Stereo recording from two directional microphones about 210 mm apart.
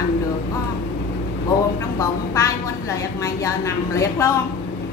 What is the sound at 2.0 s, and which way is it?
A woman's voice, 15° left (ahead or behind).